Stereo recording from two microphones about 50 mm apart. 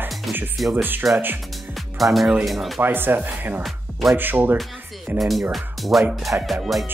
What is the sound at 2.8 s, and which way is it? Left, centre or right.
Speech, right.